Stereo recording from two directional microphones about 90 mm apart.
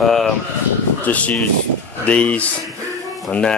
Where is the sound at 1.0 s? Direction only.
15° left (ahead or behind).